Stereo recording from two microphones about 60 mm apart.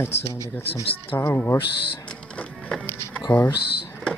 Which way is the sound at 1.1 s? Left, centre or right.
Left.